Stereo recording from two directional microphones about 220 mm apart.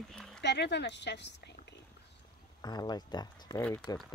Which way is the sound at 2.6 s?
15° left (ahead or behind).